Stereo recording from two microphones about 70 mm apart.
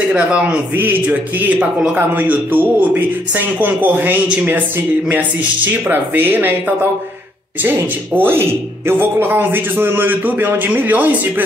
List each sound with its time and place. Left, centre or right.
0.1 s a man's voice: centre
7.6 s speech: right